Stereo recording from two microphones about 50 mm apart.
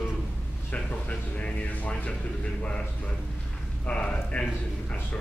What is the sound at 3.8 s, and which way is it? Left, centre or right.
Speech, left.